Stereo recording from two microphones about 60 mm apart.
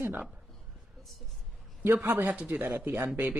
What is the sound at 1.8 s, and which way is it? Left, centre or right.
Speech, right.